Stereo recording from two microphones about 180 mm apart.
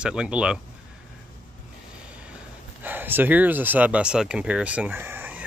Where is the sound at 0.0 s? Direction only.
5° right (ahead or behind).